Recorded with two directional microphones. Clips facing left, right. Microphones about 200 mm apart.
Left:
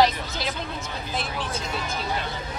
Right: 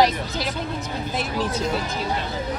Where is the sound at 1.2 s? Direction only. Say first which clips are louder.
Right 5 dB; 35° right (ahead or behind).